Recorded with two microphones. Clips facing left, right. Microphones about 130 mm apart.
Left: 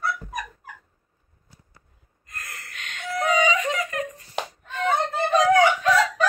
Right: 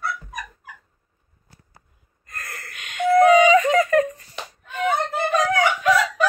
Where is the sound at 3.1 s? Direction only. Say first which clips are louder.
Right 9 dB; 50° right (ahead or behind).